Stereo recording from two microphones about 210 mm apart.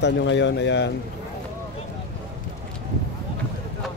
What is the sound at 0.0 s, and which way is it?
Speech, 60° left (ahead or behind).